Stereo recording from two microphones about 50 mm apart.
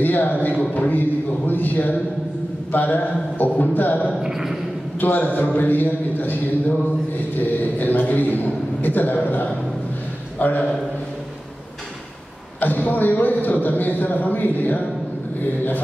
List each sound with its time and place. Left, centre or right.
0.0 s a man's voice: left
4.2 s a sound: centre
5.0 s a man's voice: left
7.3 s a man's voice: left
12.5 s a man's voice: left